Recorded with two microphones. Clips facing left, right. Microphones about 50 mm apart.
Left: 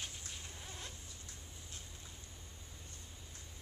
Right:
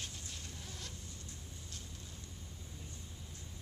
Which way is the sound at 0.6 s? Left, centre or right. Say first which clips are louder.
Even; left.